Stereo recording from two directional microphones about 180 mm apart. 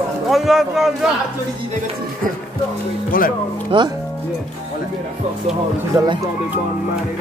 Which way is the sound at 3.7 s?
30° right (ahead or behind).